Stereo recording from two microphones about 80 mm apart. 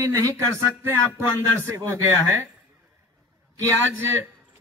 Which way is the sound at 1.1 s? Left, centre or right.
Right.